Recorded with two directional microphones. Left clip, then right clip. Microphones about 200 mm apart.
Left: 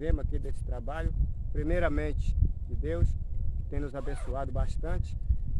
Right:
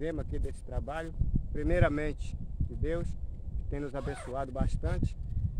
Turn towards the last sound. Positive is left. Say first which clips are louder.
# right 2 dB
turn(degrees=0)  # may be behind; listen again after turning